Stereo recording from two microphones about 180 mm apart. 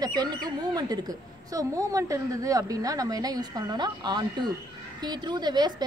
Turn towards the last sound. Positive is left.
turn(degrees=-25)  # may be behind; listen again after turning